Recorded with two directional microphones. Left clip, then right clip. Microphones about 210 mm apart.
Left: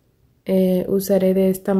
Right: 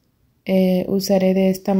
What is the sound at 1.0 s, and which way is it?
Speech, 30° left (ahead or behind).